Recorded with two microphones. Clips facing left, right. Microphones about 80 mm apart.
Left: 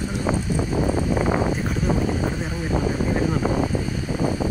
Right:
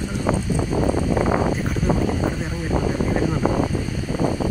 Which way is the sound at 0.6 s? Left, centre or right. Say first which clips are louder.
Right 1 dB; centre.